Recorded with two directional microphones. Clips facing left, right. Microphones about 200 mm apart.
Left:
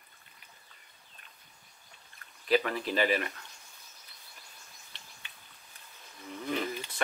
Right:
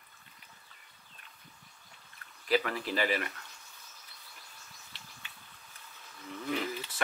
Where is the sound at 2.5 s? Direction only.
20° left (ahead or behind).